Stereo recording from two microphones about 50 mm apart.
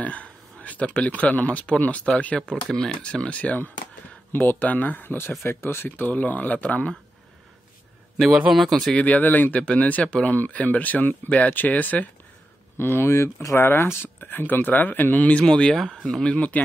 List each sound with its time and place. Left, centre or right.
0.0 s speech: left
4.3 s speech: left
4.6 s speech: left
8.5 s speech: centre
8.9 s speech: left
9.6 s speech: left
12.7 s speech: left
13.6 s speech: left
15.4 s speech: centre
15.8 s speech: centre
16.3 s speech: left